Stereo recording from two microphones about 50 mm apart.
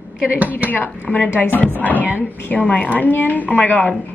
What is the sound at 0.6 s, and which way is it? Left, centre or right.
A woman's voice, left.